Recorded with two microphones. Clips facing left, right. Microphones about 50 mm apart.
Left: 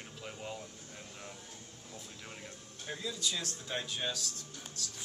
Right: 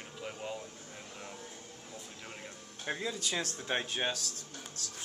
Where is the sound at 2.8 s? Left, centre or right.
Right.